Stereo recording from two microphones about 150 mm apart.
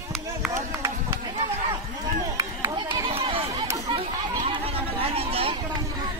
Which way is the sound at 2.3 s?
25° right (ahead or behind).